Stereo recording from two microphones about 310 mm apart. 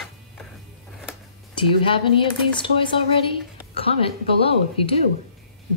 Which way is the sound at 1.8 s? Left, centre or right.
Centre.